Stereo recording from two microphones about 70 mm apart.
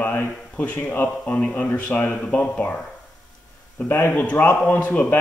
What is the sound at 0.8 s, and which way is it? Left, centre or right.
A man's voice, left.